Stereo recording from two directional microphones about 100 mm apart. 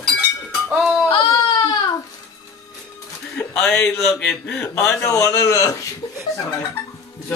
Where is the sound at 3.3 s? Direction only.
10° left (ahead or behind).